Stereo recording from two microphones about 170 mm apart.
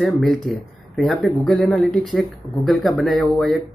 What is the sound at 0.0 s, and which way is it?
Speech, centre (ahead or behind).